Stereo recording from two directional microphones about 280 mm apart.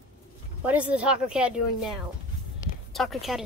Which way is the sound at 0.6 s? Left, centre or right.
Centre.